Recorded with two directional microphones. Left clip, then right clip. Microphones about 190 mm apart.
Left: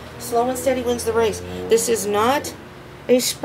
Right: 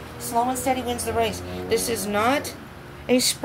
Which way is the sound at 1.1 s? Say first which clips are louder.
Left 4 dB; 45° left (ahead or behind).